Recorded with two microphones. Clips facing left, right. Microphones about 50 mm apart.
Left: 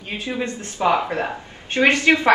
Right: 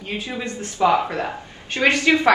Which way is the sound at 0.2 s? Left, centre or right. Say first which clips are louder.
Left 2 dB; left.